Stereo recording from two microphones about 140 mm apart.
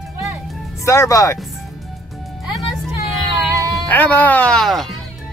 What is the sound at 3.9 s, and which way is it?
Speech, 10° left (ahead or behind).